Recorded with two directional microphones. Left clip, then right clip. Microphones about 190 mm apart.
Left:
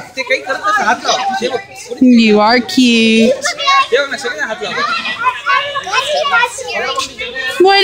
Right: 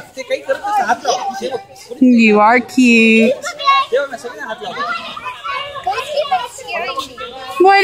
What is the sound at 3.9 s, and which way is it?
Speech, 15° right (ahead or behind).